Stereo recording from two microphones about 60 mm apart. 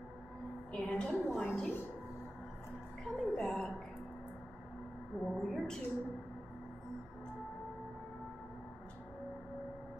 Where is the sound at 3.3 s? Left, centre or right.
Centre.